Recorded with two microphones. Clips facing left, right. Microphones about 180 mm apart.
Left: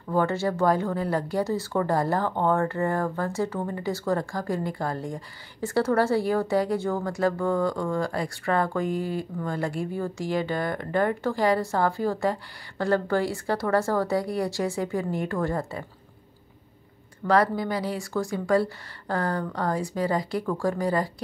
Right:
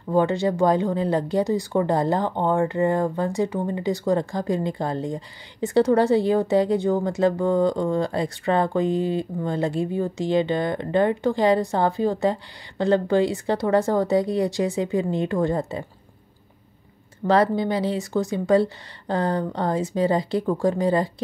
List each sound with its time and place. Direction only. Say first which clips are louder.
0.1 s speech: right 4 dB; 20° right (ahead or behind)
17.2 s speech: right 3 dB; 25° right (ahead or behind)